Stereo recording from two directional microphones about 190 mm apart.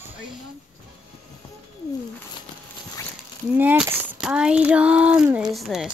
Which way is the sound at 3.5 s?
10° right (ahead or behind).